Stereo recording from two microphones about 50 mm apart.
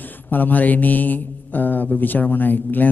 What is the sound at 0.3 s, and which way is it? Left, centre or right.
Speech, left.